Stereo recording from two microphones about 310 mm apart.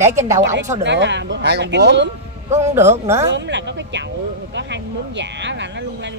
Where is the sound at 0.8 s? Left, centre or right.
Right.